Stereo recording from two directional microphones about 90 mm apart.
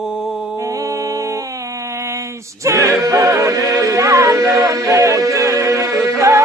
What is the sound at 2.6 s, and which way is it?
Music, 35° right (ahead or behind).